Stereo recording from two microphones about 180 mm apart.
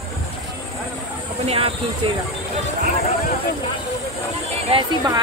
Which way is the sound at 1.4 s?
35° right (ahead or behind).